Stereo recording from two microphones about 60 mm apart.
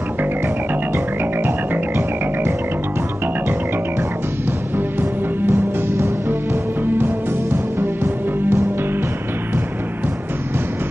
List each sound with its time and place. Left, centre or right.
0.9 s music: right
5.5 s music: right